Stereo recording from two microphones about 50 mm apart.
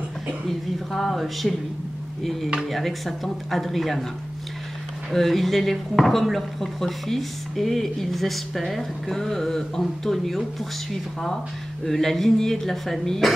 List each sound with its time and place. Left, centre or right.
0.5 s speech: centre
2.6 s speech: centre
5.1 s speech: centre